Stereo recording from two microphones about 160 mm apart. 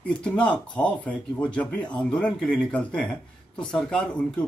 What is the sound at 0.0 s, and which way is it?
Speech, 5° left (ahead or behind).